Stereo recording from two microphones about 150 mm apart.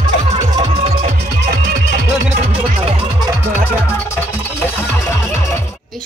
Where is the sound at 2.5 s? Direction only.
40° right (ahead or behind).